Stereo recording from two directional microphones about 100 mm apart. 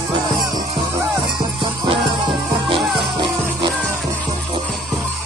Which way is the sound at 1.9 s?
65° right (ahead or behind).